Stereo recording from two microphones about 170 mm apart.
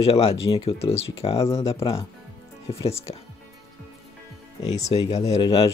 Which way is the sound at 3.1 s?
30° left (ahead or behind).